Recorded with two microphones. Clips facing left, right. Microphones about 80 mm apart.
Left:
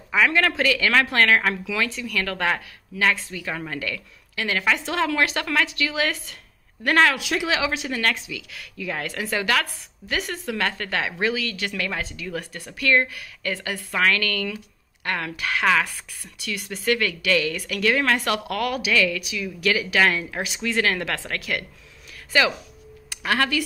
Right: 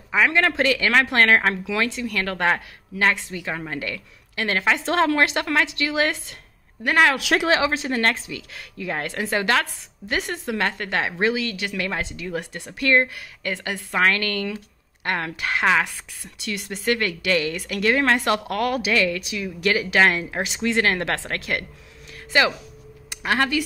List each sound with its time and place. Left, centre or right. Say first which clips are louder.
0.1 s a woman's voice: right 1 dB; right
6.8 s a woman's voice: even; centre
7.2 s speech: right 4 dB; right
7.4 s a woman's voice: right 2 dB; right
23.2 s a woman's voice: right 1 dB; right